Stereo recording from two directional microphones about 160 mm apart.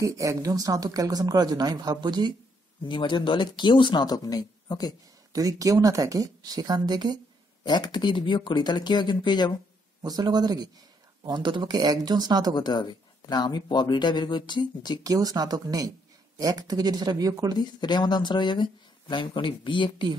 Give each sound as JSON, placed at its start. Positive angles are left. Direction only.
{"t": 0.0, "sound": "speech", "side_deg": -20}
{"t": 2.8, "sound": "speech", "side_deg": 30}
{"t": 5.3, "sound": "speech", "side_deg": -20}
{"t": 7.6, "sound": "speech", "side_deg": 25}
{"t": 10.0, "sound": "speech", "side_deg": -25}
{"t": 12.5, "sound": "speech", "side_deg": 25}
{"t": 15.0, "sound": "speech", "side_deg": -25}
{"t": 17.6, "sound": "speech", "side_deg": 25}